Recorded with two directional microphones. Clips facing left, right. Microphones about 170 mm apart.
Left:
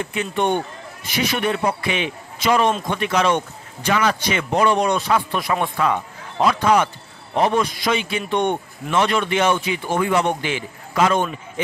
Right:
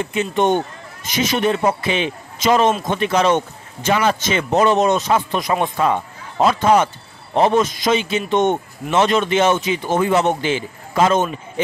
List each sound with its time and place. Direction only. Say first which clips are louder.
0.1 s a man's voice: right 4 dB; 20° right (ahead or behind)